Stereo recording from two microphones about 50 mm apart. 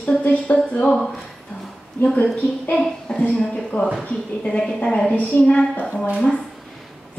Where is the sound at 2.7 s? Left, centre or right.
Centre.